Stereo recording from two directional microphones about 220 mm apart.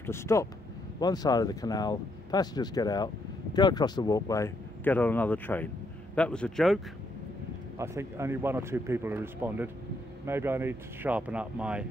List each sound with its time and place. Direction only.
0.0 s speech: 10° left (ahead or behind)
7.7 s speech: 10° right (ahead or behind)